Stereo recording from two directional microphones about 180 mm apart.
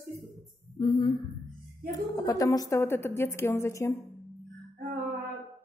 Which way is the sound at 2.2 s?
20° left (ahead or behind).